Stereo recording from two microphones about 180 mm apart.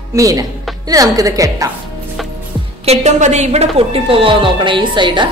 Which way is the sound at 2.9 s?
40° right (ahead or behind).